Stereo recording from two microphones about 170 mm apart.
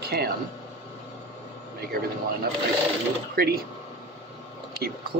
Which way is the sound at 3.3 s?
65° right (ahead or behind).